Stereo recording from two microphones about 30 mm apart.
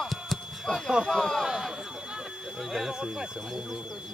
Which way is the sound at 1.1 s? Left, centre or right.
Centre.